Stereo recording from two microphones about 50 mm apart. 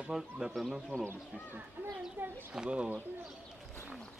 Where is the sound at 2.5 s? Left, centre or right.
Centre.